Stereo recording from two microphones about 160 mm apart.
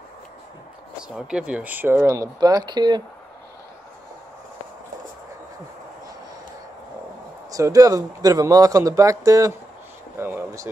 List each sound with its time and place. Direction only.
1.0 s speech: 5° right (ahead or behind); by 3.0 s 25° right (ahead or behind)
7.5 s speech: 20° right (ahead or behind)